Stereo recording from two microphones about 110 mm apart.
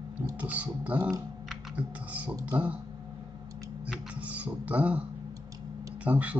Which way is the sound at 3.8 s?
10° right (ahead or behind).